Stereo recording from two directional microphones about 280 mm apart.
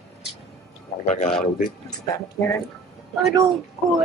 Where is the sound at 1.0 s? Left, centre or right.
Left.